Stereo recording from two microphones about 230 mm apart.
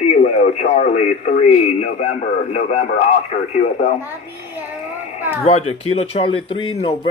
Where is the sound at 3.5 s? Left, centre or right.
Left.